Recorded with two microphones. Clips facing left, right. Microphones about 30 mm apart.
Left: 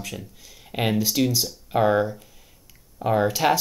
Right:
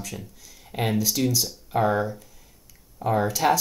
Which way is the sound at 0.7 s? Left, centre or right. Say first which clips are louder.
Left 2 dB; centre.